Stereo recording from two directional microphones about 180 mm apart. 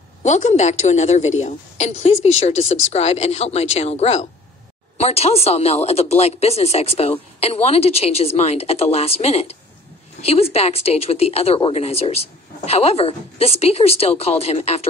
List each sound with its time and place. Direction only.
0.2 s a woman's voice: 40° left (ahead or behind)